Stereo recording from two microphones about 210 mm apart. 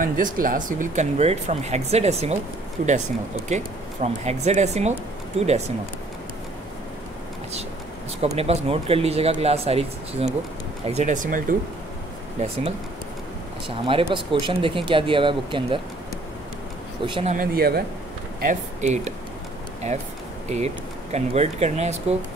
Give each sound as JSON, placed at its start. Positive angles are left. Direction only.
{"t": 0.0, "sound": "speech", "side_deg": -40}
{"t": 8.4, "sound": "speech", "side_deg": -30}
{"t": 13.7, "sound": "speech", "side_deg": -25}
{"t": 17.0, "sound": "speech", "side_deg": -25}
{"t": 17.3, "sound": "speech", "side_deg": -45}
{"t": 18.4, "sound": "speech", "side_deg": -35}
{"t": 20.4, "sound": "speech", "side_deg": -35}